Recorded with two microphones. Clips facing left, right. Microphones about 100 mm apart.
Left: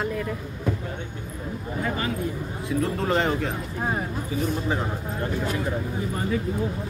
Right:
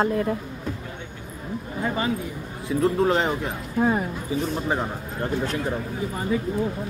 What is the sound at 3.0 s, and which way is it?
Speech, 20° right (ahead or behind).